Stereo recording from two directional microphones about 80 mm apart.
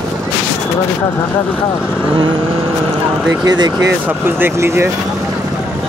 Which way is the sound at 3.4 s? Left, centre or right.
Right.